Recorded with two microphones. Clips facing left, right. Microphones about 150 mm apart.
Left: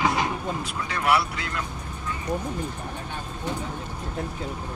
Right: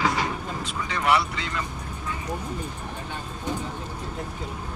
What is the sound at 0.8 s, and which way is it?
Speech, 5° left (ahead or behind).